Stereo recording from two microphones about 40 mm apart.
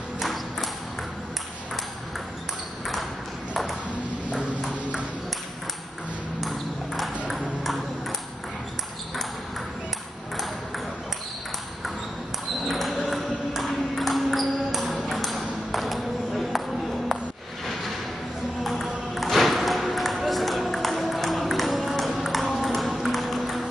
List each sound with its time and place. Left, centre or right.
0.2 s music: centre
3.9 s ping: right
6.4 s ping: centre
12.6 s a sound: centre
13.0 s music: centre
15.0 s ping: centre
18.6 s music: centre